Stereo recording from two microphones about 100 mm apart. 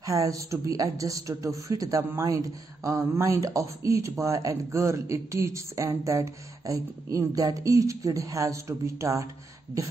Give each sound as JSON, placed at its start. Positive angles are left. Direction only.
{"t": 0.0, "sound": "speech", "side_deg": -35}